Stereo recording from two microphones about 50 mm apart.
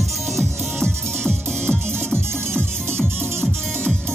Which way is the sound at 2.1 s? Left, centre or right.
Right.